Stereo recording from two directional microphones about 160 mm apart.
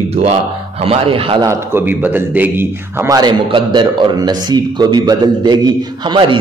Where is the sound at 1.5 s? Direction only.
15° right (ahead or behind); by 6.4 s 30° right (ahead or behind).